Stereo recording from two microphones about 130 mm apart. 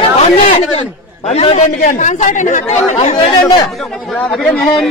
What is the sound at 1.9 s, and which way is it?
Speech, 70° left (ahead or behind).